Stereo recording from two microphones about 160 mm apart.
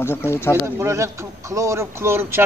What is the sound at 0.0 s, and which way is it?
Speech, 15° left (ahead or behind).